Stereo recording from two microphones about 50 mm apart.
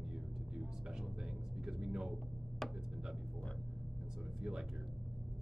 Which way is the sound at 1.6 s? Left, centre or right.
Centre.